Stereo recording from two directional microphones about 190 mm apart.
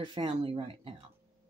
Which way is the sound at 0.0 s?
30° right (ahead or behind).